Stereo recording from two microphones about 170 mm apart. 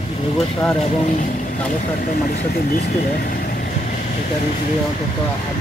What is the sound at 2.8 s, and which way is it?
Vehicle, 60° left (ahead or behind).